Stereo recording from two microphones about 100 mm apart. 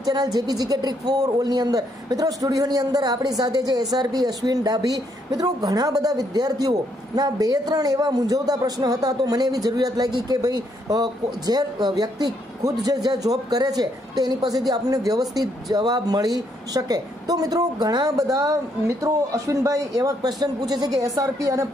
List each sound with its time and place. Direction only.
0.0 s speech: 40° right (ahead or behind)